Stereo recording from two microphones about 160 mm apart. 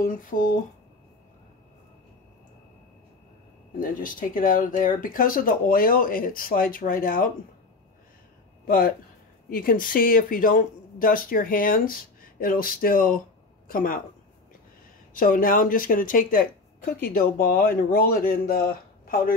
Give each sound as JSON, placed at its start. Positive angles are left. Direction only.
{"t": 0.0, "sound": "a woman's voice", "side_deg": 60}
{"t": 3.8, "sound": "a woman's voice", "side_deg": 60}
{"t": 8.6, "sound": "a woman's voice", "side_deg": 65}
{"t": 15.1, "sound": "a woman's voice", "side_deg": 60}